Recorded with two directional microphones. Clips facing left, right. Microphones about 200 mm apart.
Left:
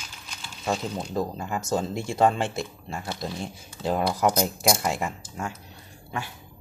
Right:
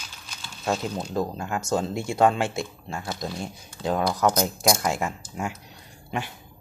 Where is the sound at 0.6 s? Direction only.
Centre (ahead or behind).